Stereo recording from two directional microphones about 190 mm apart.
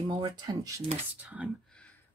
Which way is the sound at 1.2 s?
5° right (ahead or behind).